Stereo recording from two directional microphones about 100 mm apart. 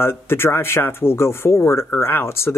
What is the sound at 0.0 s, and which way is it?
Speech, 25° left (ahead or behind).